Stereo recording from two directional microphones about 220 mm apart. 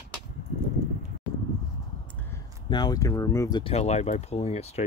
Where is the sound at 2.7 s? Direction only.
20° left (ahead or behind).